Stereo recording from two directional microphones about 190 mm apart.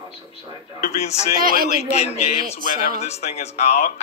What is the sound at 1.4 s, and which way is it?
Speech, 50° right (ahead or behind).